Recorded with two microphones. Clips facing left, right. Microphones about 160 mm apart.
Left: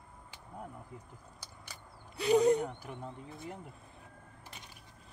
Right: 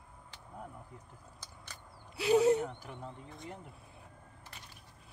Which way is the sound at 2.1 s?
5° right (ahead or behind).